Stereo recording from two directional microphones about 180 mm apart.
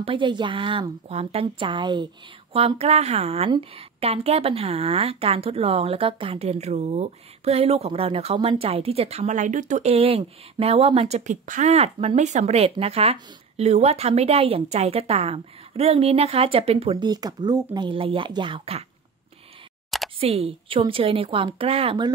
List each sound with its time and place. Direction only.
0.0 s a woman's voice: 30° right (ahead or behind)
20.2 s a woman's voice: 35° right (ahead or behind)